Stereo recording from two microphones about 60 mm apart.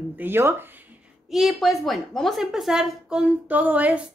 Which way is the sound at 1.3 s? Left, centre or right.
Centre.